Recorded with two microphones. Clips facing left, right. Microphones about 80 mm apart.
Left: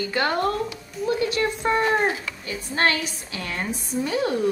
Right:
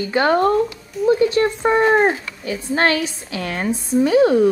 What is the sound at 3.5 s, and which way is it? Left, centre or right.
Speech, right.